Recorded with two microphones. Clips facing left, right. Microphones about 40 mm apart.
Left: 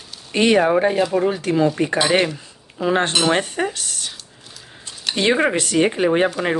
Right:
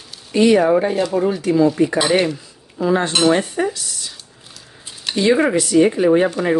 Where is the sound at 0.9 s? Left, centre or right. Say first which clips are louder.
Even; centre.